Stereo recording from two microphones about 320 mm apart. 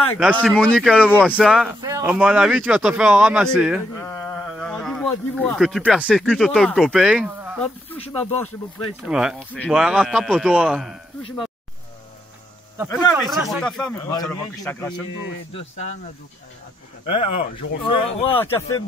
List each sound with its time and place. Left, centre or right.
0.2 s speech: centre
13.1 s speech: centre
17.0 s speech: centre